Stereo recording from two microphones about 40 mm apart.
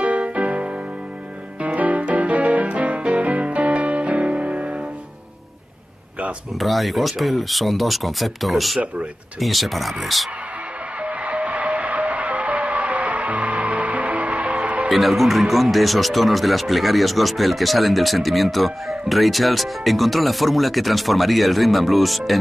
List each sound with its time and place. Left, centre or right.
0.0 s music: right
6.6 s speech: centre
11.0 s music: right
14.9 s speech: centre